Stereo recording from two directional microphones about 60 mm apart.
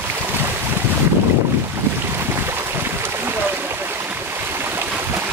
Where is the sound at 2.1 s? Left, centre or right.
Right.